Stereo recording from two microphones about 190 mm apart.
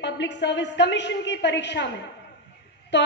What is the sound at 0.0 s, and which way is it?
A woman's voice, 65° left (ahead or behind).